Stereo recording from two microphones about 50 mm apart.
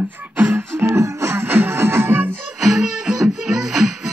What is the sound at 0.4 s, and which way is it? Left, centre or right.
Music, right.